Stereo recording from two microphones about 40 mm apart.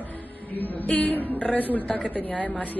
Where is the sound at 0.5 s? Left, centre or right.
Left.